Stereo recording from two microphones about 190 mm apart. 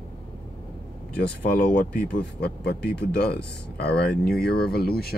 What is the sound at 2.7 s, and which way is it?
Speech, 60° left (ahead or behind).